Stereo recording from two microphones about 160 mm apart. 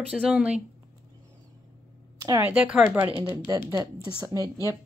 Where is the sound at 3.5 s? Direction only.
20° right (ahead or behind).